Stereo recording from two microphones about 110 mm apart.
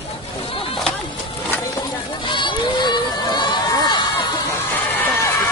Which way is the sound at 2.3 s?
45° left (ahead or behind).